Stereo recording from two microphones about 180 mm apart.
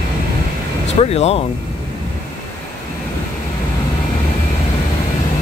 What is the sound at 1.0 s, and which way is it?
Speech, 35° left (ahead or behind).